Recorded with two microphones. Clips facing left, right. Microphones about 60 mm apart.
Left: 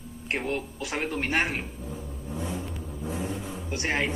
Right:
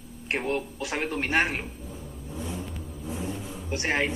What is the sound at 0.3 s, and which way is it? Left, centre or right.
Speech, right.